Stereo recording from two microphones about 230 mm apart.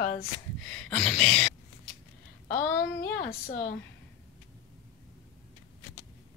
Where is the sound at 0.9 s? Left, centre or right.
Centre.